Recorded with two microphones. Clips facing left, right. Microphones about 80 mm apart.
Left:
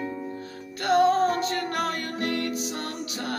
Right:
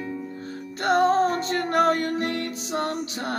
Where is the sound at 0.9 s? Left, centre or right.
Right.